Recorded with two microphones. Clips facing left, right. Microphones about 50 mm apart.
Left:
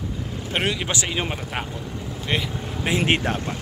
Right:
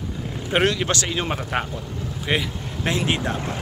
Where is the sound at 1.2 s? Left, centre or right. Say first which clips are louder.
Right 4 dB; centre.